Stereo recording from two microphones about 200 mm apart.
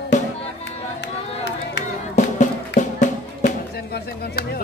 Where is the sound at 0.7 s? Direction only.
60° left (ahead or behind).